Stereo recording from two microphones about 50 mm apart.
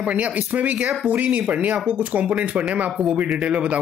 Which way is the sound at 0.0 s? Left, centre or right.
Right.